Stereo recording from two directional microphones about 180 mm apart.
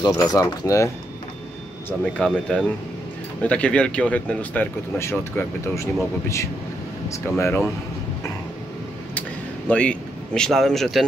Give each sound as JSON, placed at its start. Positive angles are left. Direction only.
{"t": 0.0, "sound": "speech", "side_deg": 20}
{"t": 1.9, "sound": "speech", "side_deg": 5}
{"t": 9.7, "sound": "speech", "side_deg": 5}